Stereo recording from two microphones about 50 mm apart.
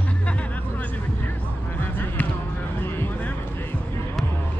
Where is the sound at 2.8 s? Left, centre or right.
Left.